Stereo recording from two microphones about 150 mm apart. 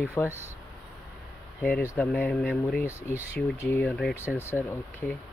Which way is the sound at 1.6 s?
10° left (ahead or behind).